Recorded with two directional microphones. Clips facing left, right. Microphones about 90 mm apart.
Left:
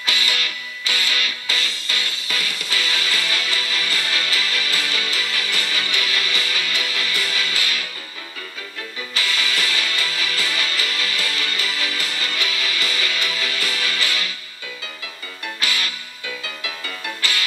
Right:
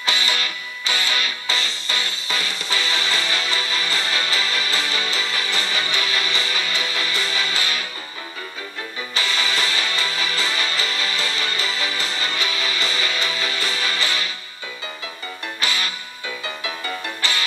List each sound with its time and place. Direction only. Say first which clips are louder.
0.0 s music: right 1 dB; 30° right (ahead or behind)
9.1 s music: right 1 dB; 30° right (ahead or behind)
15.6 s music: right 1 dB; 30° right (ahead or behind)